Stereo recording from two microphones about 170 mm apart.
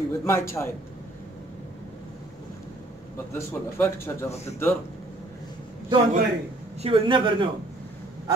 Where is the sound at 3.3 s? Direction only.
15° left (ahead or behind).